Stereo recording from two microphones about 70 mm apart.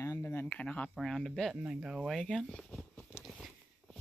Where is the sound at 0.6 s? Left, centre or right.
Centre.